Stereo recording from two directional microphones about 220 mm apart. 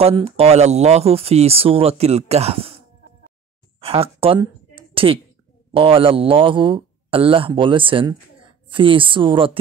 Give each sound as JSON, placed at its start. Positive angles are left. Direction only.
{"t": 0.0, "sound": "speech", "side_deg": -25}
{"t": 3.8, "sound": "a woman's voice", "side_deg": -25}